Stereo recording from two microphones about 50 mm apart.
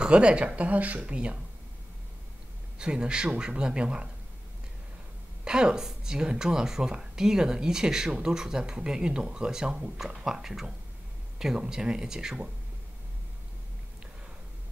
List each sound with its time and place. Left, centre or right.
0.0 s speech: right
2.8 s speech: centre
5.4 s speech: centre